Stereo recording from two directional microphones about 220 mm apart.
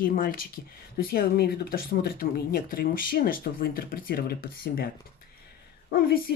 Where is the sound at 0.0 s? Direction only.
40° left (ahead or behind).